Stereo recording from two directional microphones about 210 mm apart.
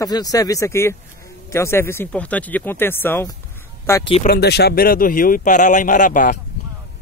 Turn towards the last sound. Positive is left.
turn(degrees=40)  # may be behind; listen again after turning